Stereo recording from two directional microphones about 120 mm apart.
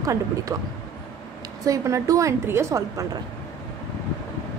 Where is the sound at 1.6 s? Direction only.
25° right (ahead or behind).